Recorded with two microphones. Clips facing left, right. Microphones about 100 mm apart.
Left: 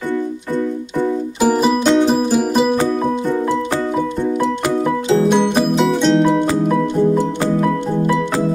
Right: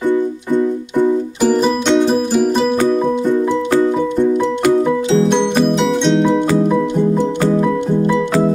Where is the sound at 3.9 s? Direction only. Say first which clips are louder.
Right 4 dB; 5° left (ahead or behind).